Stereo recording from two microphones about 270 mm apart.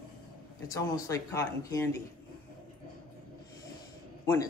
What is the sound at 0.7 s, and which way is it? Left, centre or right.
A woman's voice, centre.